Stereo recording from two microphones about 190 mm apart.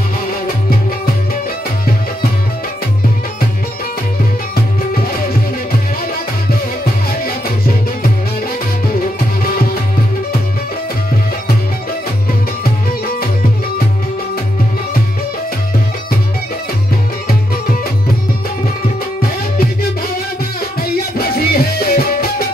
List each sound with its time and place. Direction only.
7.2 s music: 50° left (ahead or behind)
9.4 s music: 50° left (ahead or behind)
21.2 s music: 50° left (ahead or behind)